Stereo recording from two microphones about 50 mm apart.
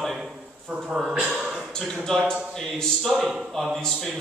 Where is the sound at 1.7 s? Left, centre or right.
Centre.